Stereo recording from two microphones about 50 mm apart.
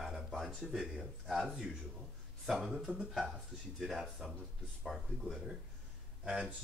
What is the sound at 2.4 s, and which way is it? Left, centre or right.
Speech, centre.